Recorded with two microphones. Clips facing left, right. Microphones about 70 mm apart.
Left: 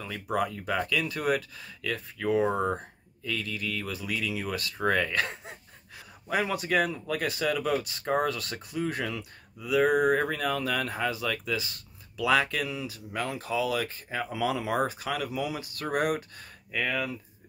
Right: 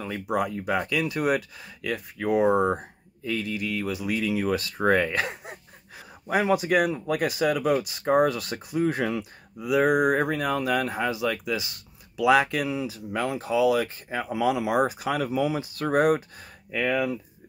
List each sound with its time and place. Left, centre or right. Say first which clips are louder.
0.0 s speech: right 3 dB; centre